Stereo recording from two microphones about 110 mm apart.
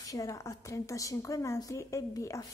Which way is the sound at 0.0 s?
30° left (ahead or behind).